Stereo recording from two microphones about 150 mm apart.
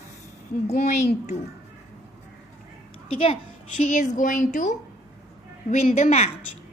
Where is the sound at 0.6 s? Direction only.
50° left (ahead or behind).